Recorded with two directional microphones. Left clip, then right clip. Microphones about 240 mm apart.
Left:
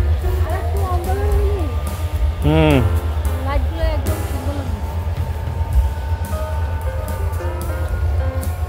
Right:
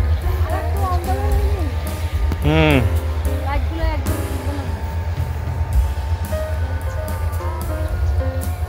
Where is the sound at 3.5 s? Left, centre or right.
Left.